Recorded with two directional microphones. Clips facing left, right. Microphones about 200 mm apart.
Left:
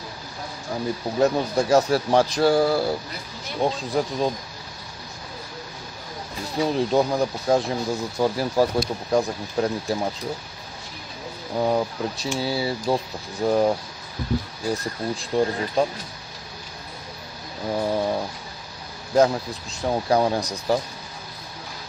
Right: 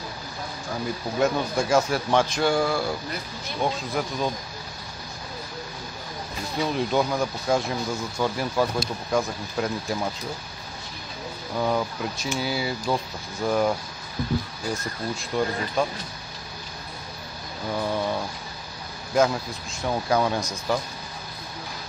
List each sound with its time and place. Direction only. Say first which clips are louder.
1.2 s speech: left 3 dB; 35° left (ahead or behind)
6.6 s speech: left 3 dB; 35° left (ahead or behind)
11.5 s speech: left 3 dB; 35° left (ahead or behind)
17.6 s speech: left 3 dB; 35° left (ahead or behind)